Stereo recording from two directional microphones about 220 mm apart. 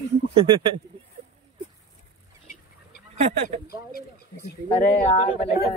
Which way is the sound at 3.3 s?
30° right (ahead or behind).